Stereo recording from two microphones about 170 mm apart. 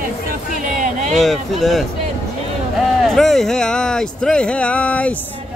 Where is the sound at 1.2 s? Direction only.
Centre (ahead or behind).